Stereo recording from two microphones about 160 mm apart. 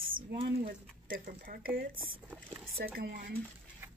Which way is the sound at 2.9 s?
65° right (ahead or behind).